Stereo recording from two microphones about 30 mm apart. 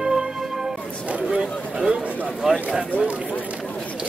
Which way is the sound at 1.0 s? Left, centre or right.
Right.